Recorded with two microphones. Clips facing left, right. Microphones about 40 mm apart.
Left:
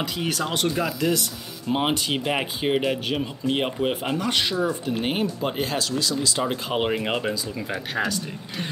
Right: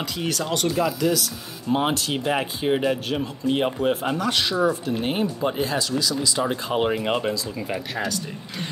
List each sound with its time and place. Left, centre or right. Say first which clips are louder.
0.0 s speech: even; centre
5.6 s speech: right 1 dB; left
6.5 s speech: right 1 dB; centre